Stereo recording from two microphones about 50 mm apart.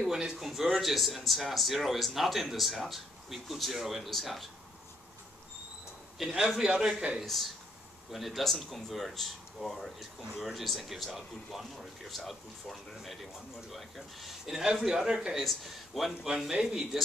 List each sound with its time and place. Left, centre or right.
0.0 s speech: centre
0.5 s speech: centre
6.1 s speech: centre
6.7 s a man's voice: centre
7.2 s speech: centre